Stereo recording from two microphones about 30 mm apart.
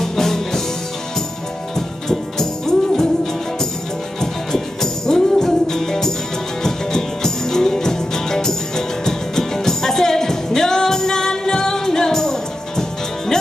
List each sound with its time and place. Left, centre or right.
0.0 s music: centre
1.8 s music: centre
5.0 s music: centre